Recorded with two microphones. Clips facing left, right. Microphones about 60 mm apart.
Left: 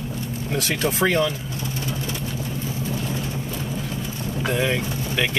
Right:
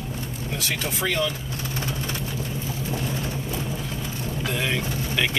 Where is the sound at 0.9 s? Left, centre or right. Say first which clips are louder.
Left 5 dB; left.